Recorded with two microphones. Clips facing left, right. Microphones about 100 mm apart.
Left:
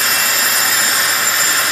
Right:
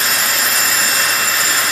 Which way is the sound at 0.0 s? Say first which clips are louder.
Left 1 dB; centre (ahead or behind).